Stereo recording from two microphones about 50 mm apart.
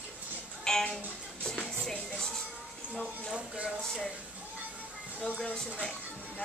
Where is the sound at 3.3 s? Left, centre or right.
Right.